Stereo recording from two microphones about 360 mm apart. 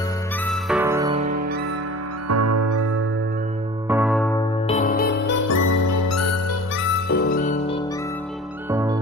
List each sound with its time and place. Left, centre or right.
0.5 s music: centre
2.2 s music: right
3.9 s music: centre
4.4 s music: centre
5.5 s music: left
7.1 s music: left
8.6 s music: centre